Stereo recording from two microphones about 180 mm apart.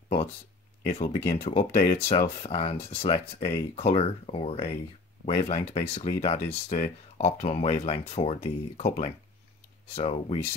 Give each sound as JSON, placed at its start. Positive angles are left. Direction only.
{"t": 0.8, "sound": "speech", "side_deg": 35}